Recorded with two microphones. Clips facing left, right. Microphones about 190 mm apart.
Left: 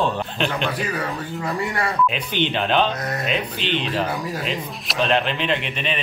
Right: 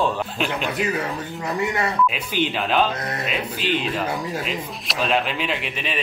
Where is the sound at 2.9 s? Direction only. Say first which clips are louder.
Left 1 dB; 25° right (ahead or behind).